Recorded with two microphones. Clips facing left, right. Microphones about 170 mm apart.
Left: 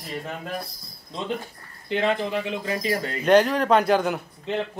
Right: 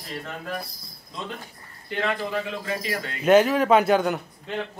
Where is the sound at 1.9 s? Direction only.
25° left (ahead or behind).